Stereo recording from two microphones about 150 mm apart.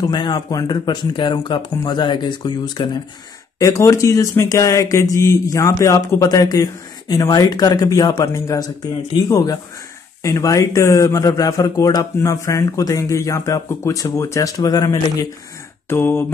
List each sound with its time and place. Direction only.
0.1 s speech: 30° left (ahead or behind)
3.5 s speech: 20° left (ahead or behind)
15.9 s mantra: 15° left (ahead or behind)